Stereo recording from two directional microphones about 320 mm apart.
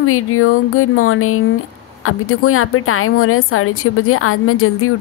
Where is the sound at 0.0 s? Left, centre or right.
Left.